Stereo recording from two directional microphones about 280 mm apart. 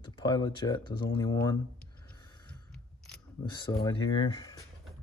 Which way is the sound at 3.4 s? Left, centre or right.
Centre.